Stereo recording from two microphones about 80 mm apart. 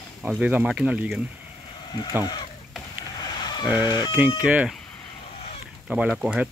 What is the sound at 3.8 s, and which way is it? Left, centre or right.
Speech, left.